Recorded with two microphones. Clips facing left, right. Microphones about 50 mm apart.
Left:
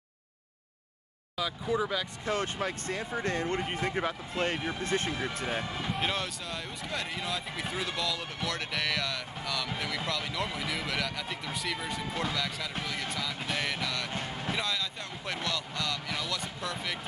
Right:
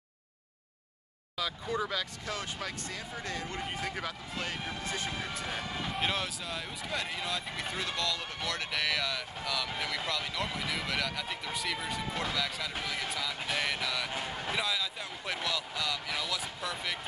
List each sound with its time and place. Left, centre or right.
1.3 s speech: centre
2.2 s speech: left
3.6 s speech: left
4.8 s speech: left
5.4 s speech: left
5.7 s speech: centre